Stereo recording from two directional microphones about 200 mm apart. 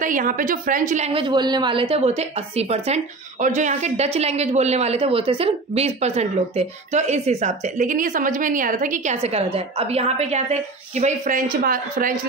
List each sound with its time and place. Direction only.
0.0 s a woman's voice: 40° right (ahead or behind)